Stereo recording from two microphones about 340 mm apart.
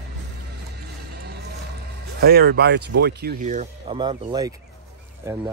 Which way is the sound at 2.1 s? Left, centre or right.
Right.